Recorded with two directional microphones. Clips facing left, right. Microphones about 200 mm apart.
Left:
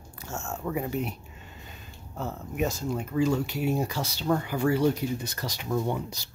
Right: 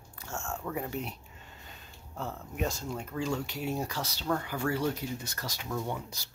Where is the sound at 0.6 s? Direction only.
10° left (ahead or behind).